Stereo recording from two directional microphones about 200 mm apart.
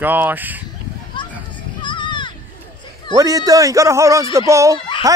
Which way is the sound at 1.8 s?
25° left (ahead or behind).